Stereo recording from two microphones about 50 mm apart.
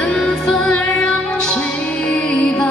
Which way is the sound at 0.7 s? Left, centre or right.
Centre.